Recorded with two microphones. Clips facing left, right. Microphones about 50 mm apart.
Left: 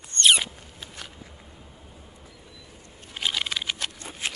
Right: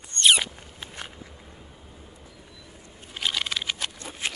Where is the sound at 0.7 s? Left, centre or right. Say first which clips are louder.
Right 4 dB; right.